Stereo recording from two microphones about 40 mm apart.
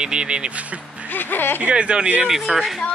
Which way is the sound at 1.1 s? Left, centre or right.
Left.